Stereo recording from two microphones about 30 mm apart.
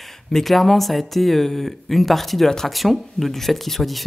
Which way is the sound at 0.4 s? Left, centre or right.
Centre.